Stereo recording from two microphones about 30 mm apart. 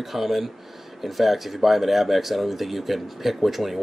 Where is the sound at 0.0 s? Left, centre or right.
Centre.